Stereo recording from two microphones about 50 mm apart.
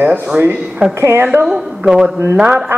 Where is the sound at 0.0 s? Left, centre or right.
Right.